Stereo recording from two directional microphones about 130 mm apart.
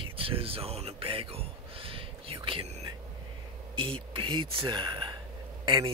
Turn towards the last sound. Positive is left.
turn(degrees=-35)  # may be behind; listen again after turning